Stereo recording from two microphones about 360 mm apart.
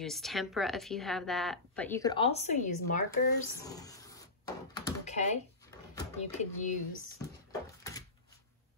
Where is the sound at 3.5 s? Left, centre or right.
Centre.